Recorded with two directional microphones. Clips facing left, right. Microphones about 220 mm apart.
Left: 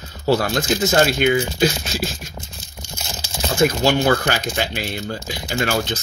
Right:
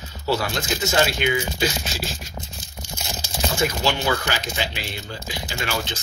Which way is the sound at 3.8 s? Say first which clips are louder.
Left 6 dB; 50° left (ahead or behind).